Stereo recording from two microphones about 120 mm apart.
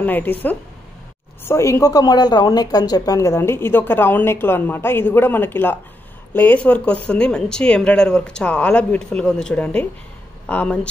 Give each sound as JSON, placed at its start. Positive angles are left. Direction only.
{"t": 0.0, "sound": "speech", "side_deg": 15}